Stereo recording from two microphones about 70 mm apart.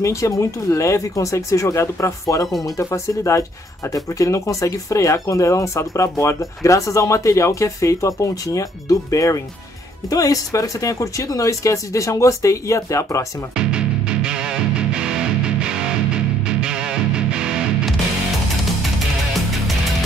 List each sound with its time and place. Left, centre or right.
0.0 s speech: left
13.6 s music: centre